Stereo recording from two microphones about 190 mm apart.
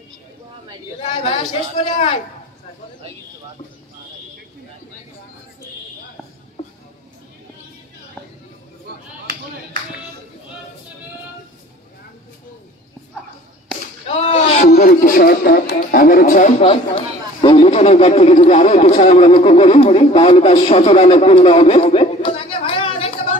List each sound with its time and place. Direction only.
1.0 s speech: 25° left (ahead or behind)
14.0 s a sound: 30° left (ahead or behind)
14.7 s speech: 45° left (ahead or behind)
16.6 s a man's voice: 30° left (ahead or behind)